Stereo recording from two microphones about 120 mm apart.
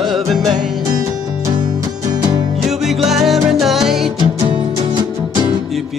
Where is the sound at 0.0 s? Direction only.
Centre (ahead or behind).